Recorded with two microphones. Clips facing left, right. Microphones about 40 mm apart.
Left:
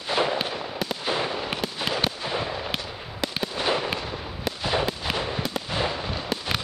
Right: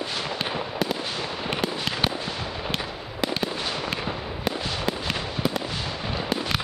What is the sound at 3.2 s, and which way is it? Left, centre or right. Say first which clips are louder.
Fireworks: right 3 dB; centre.